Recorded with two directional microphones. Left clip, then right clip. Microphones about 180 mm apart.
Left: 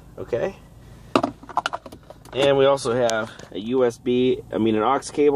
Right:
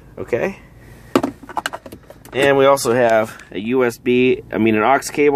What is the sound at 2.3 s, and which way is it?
Speech, 30° right (ahead or behind).